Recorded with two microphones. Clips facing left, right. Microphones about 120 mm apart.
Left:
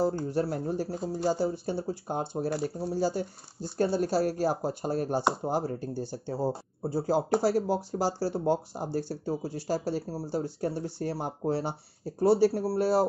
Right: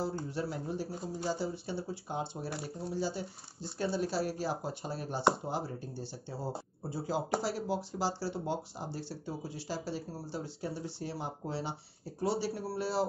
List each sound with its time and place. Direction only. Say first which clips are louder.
0.0 s speech: left 8 dB; 45° left (ahead or behind)